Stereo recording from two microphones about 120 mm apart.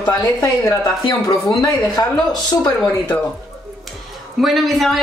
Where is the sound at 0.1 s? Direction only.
30° left (ahead or behind).